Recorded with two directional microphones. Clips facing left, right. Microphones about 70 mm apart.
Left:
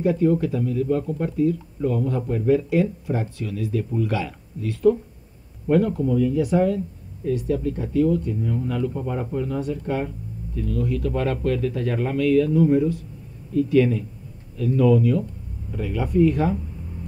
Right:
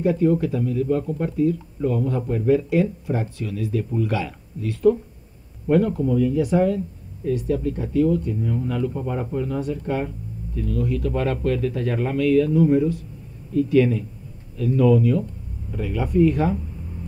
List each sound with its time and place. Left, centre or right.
0.0 s speech: right